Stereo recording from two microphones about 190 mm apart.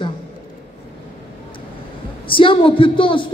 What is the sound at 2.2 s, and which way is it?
A man's voice, 25° left (ahead or behind).